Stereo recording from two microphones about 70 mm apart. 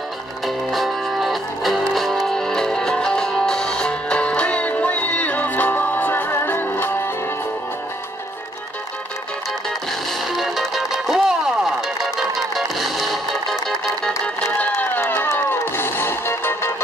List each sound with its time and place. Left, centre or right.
0.7 s music: centre; by 7.1 s left
10.3 s music: centre
14.0 s music: centre; by 16.7 s left